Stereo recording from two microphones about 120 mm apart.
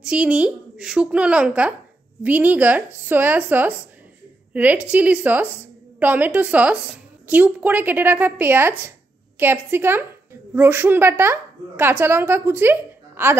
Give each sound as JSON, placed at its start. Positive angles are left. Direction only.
{"t": 0.0, "sound": "a woman's voice", "side_deg": -10}